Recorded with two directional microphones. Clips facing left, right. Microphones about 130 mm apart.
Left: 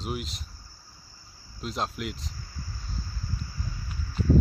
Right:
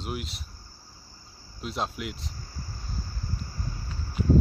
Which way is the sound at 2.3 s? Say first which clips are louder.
Right 1 dB; 40° right (ahead or behind).